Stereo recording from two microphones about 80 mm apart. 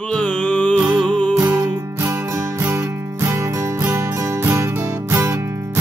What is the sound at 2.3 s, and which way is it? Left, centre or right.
Music, right.